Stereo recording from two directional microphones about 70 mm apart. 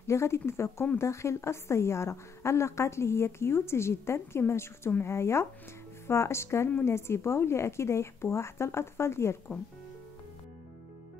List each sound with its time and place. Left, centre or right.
0.0 s a woman's voice: left